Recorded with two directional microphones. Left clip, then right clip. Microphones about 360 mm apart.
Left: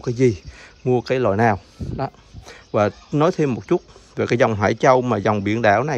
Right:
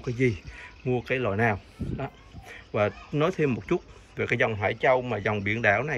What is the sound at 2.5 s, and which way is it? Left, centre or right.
Speech, centre.